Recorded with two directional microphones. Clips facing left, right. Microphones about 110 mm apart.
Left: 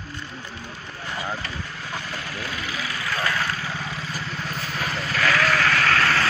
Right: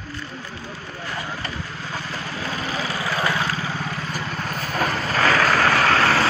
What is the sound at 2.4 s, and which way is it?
Vehicle, 35° right (ahead or behind).